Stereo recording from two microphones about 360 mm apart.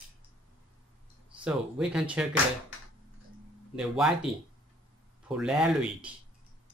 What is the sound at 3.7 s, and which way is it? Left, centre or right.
Speech, centre.